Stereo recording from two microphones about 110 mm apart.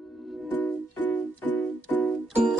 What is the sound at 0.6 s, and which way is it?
Music, 15° left (ahead or behind).